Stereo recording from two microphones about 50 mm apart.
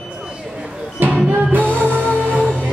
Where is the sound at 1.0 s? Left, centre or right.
Right.